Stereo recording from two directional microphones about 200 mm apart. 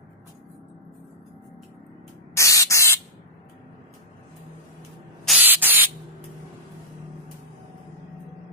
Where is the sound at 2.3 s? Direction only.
15° left (ahead or behind).